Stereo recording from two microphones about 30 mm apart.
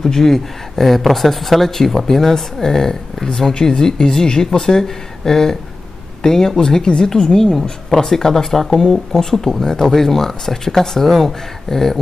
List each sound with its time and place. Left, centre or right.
0.0 s speech: centre
7.2 s speech: centre
8.6 s speech: centre